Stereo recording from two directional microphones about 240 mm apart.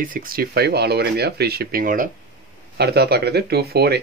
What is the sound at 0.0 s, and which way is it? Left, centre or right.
Speech, right.